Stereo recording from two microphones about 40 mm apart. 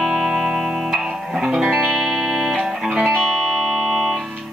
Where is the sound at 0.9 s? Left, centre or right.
Centre.